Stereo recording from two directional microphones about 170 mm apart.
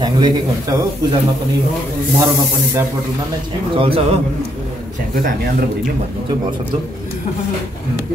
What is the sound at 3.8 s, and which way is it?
Speech, 35° right (ahead or behind).